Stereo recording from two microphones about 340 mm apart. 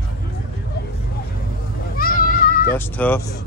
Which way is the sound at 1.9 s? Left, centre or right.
Left.